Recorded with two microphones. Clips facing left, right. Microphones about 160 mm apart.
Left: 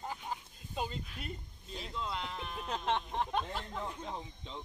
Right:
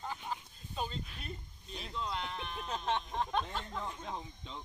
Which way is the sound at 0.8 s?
5° left (ahead or behind).